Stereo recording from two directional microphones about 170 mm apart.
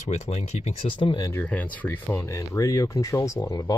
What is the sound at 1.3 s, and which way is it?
Speech, 10° left (ahead or behind).